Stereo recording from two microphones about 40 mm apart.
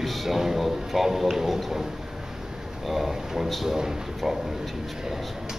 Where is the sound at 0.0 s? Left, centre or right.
Centre.